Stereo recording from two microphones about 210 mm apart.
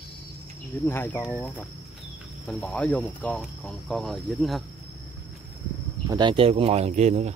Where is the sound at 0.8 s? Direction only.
10° left (ahead or behind).